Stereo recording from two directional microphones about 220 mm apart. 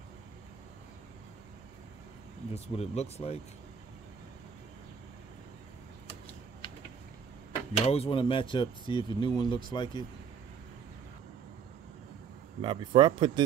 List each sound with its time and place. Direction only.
2.5 s speech: 30° left (ahead or behind)
6.0 s a sound: 20° left (ahead or behind)
7.8 s speech: 25° left (ahead or behind)
12.6 s speech: 20° right (ahead or behind)